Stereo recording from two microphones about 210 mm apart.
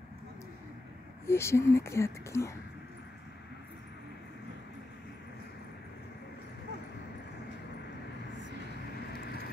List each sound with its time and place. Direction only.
1.2 s speech: 10° left (ahead or behind)
9.1 s vehicle: 50° left (ahead or behind)